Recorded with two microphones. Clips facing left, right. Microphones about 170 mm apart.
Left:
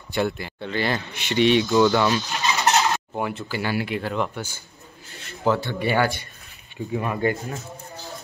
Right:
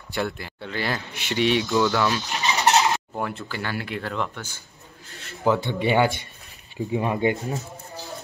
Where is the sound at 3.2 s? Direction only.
5° left (ahead or behind).